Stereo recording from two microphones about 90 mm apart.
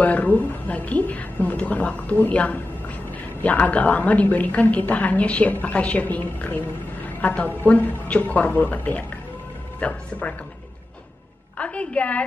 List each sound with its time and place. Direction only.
0.0 s a woman's voice: 15° left (ahead or behind)
11.5 s a woman's voice: 15° left (ahead or behind)